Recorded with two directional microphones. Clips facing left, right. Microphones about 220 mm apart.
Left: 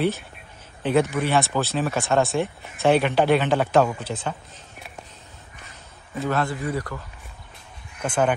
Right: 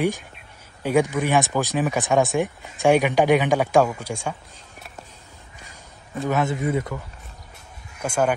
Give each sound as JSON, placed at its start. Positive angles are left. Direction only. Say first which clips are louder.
{"t": 0.8, "sound": "speech", "louder": "right 1 dB", "side_deg": -15}
{"t": 6.2, "sound": "speech", "louder": "right 2 dB", "side_deg": -20}
{"t": 8.0, "sound": "speech", "louder": "even", "side_deg": -10}